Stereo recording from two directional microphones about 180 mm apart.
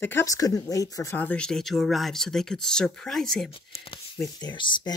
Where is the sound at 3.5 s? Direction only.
30° left (ahead or behind).